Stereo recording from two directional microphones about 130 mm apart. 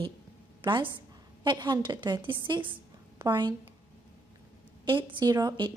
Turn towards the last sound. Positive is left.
turn(degrees=-30)  # may be behind; listen again after turning